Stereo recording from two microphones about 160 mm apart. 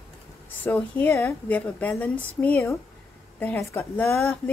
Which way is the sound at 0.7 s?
10° left (ahead or behind).